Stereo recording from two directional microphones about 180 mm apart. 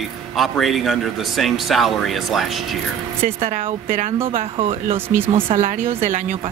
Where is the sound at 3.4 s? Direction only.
45° right (ahead or behind).